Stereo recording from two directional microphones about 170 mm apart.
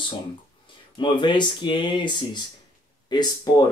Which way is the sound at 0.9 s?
25° left (ahead or behind).